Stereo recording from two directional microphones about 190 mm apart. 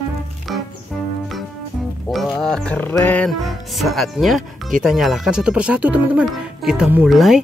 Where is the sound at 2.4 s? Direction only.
5° left (ahead or behind).